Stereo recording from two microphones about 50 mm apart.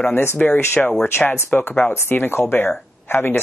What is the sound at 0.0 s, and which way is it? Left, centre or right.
Speech, left.